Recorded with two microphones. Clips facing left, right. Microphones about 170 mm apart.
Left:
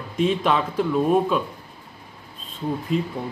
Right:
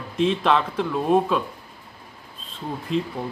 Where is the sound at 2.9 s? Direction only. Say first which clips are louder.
Even; 5° left (ahead or behind).